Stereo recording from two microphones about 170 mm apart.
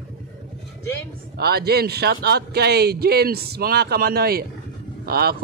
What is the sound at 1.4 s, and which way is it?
A man's voice, 70° right (ahead or behind).